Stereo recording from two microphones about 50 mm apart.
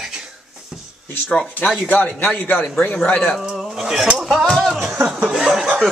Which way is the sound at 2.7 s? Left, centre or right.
Left.